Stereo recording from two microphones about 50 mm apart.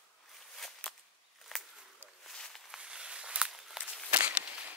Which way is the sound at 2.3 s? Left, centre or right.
Centre.